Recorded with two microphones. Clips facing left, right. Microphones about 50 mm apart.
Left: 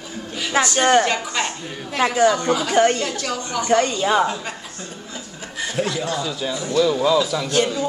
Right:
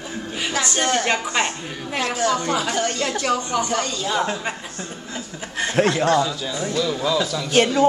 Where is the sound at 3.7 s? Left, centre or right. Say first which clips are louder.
Left 6 dB; left.